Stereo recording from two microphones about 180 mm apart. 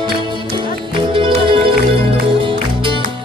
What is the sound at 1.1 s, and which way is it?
Music, 30° right (ahead or behind).